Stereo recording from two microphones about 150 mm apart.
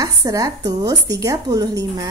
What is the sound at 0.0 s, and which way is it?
Speech, 25° right (ahead or behind).